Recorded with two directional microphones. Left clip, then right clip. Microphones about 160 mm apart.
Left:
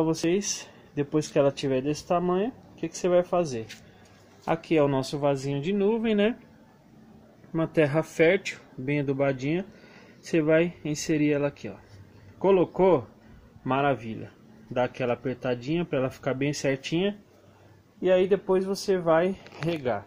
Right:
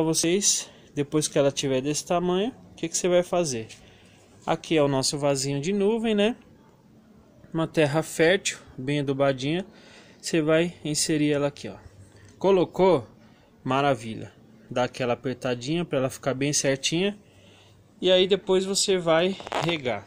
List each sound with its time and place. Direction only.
0.0 s speech: 10° right (ahead or behind)
7.5 s speech: 10° right (ahead or behind)